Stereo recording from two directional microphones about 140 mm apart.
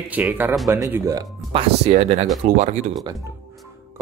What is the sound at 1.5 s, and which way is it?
Speech, 45° right (ahead or behind).